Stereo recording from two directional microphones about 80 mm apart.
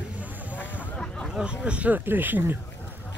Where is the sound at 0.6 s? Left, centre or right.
Left.